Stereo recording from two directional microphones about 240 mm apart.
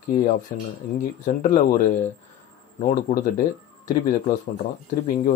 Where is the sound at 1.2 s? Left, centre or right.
Left.